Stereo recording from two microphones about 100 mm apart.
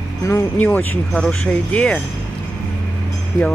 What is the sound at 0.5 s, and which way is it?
Speech, 15° left (ahead or behind).